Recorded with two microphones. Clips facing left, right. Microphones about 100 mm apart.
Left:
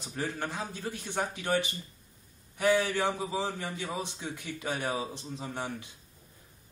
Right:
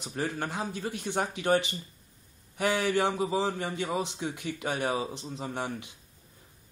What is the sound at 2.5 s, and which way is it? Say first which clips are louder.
Speech: left 3 dB; 15° right (ahead or behind).